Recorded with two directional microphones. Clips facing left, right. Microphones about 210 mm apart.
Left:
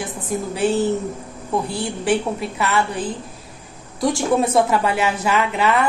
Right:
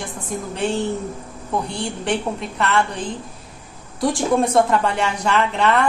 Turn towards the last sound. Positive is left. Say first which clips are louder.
# even
turn(degrees=5)  # may be behind; listen again after turning